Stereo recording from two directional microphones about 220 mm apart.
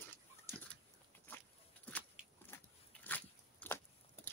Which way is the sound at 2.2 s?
5° right (ahead or behind).